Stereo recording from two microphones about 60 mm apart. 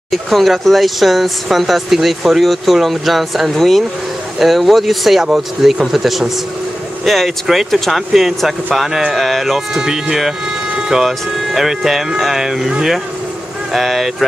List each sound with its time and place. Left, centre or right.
0.1 s speech: centre